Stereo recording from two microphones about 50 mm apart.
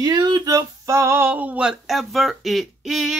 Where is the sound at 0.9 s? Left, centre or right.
Right.